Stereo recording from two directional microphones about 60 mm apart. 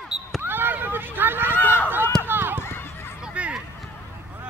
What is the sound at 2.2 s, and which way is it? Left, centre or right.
Run, right.